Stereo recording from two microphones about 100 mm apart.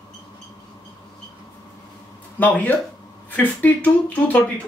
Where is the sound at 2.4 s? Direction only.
15° left (ahead or behind).